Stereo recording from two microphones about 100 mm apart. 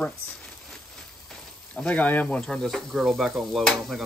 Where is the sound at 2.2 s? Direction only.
5° left (ahead or behind).